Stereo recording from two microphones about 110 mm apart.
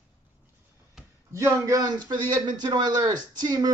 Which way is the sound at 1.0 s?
5° right (ahead or behind).